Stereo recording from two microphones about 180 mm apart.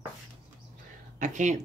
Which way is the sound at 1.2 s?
45° right (ahead or behind).